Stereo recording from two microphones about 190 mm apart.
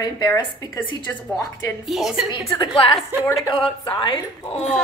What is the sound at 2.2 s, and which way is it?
A woman's voice, 25° left (ahead or behind).